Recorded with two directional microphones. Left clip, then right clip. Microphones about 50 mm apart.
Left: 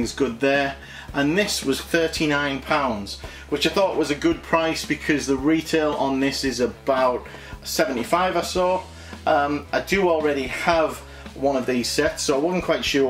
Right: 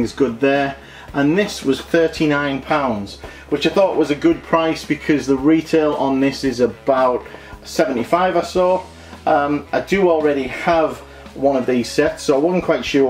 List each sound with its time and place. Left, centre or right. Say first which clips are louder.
0.0 s speech: right 5 dB; left